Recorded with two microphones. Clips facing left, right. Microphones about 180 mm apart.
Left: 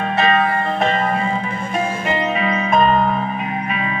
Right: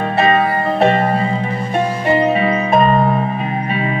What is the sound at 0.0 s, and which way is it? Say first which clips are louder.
Music: right 3 dB; 35° right (ahead or behind).